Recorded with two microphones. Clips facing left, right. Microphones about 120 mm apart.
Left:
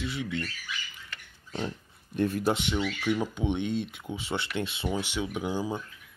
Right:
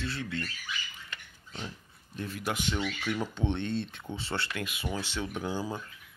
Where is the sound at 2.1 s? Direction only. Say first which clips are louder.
Left 11 dB; 55° left (ahead or behind).